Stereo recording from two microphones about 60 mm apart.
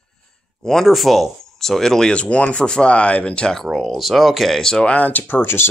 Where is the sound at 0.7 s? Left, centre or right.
Centre.